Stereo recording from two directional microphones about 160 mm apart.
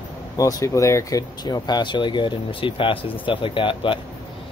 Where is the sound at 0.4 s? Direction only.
20° left (ahead or behind).